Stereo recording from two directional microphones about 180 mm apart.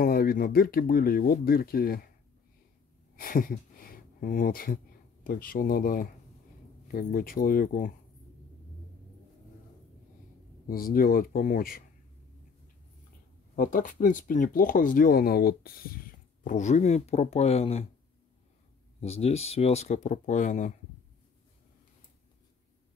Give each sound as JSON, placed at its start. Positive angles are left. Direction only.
{"t": 0.0, "sound": "speech", "side_deg": 55}
{"t": 3.2, "sound": "speech", "side_deg": 50}
{"t": 10.7, "sound": "speech", "side_deg": 55}
{"t": 13.6, "sound": "speech", "side_deg": 50}
{"t": 16.4, "sound": "speech", "side_deg": 40}
{"t": 18.9, "sound": "speech", "side_deg": 35}